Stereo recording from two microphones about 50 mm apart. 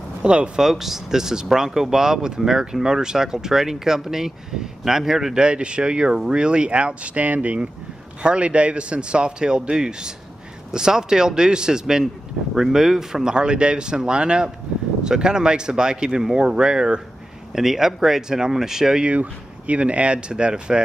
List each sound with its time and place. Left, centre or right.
0.2 s speech: right
0.6 s speech: centre; by 7.5 s right
8.2 s speech: right
19.0 s speech: right